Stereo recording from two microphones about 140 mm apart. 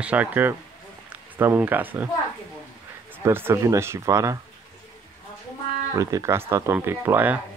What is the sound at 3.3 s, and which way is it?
A man's voice, 20° right (ahead or behind).